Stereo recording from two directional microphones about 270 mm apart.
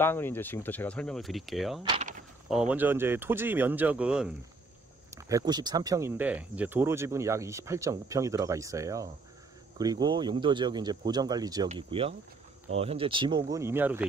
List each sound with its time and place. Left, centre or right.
0.0 s speech: centre
1.8 s speech: right
2.4 s speech: centre